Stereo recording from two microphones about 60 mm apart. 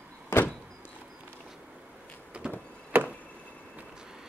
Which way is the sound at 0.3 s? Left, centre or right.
Left.